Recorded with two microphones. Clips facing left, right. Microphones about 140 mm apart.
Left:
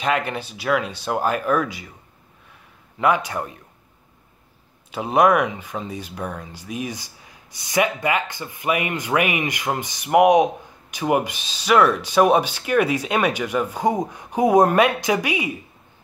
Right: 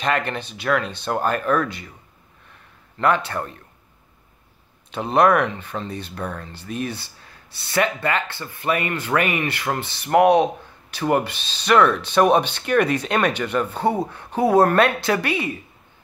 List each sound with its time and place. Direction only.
0.0 s speech: 10° left (ahead or behind)
3.0 s speech: 10° left (ahead or behind)
4.9 s speech: 10° left (ahead or behind)